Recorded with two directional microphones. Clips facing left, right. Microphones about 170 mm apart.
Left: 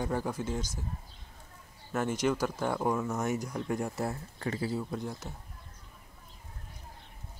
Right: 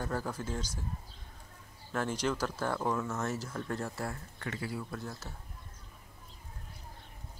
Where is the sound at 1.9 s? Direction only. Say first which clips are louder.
Left 3 dB; 5° left (ahead or behind).